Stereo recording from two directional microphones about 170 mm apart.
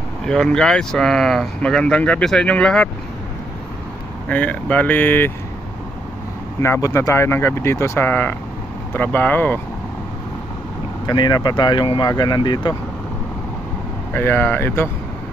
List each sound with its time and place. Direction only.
0.3 s speech: 5° left (ahead or behind)
4.3 s speech: 10° left (ahead or behind)
6.6 s speech: 15° left (ahead or behind)
11.1 s speech: 25° left (ahead or behind)
14.1 s speech: 10° left (ahead or behind)